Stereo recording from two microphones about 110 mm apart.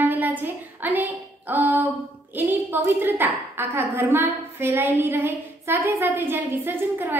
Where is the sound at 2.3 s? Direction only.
20° right (ahead or behind).